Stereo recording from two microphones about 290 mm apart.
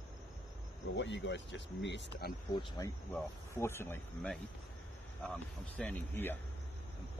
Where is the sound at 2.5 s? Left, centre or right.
Centre.